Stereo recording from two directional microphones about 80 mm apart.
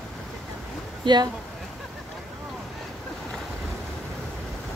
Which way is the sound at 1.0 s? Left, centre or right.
Right.